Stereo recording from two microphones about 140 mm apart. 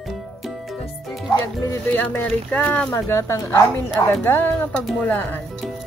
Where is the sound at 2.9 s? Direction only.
20° left (ahead or behind).